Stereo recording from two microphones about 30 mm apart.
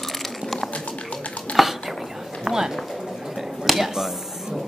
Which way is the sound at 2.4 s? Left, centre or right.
Centre.